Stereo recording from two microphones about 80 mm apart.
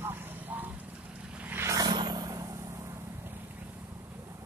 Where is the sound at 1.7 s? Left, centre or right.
Right.